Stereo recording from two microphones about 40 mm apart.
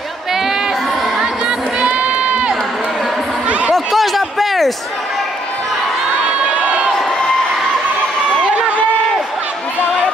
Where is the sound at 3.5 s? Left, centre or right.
Right.